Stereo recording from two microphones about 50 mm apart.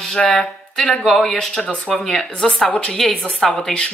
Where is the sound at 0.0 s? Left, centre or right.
Centre.